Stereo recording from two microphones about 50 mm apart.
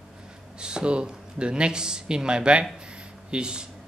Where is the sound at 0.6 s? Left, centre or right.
Centre.